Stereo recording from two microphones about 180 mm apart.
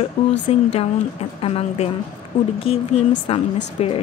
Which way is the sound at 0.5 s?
35° left (ahead or behind).